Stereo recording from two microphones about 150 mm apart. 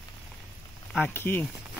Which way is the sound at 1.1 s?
15° left (ahead or behind).